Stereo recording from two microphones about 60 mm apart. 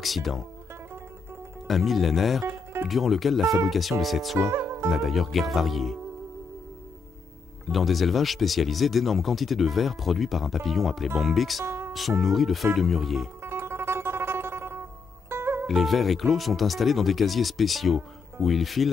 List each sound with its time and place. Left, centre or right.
0.0 s speech: centre
1.7 s speech: centre
2.4 s music: right
2.9 s speech: centre
4.5 s music: right
4.8 s speech: centre
7.7 s speech: centre
13.4 s music: right
15.6 s speech: centre